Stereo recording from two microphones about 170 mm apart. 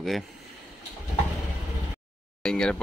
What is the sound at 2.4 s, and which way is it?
Speech, 5° left (ahead or behind).